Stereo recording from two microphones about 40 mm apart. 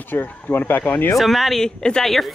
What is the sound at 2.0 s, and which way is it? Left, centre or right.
Speech, centre.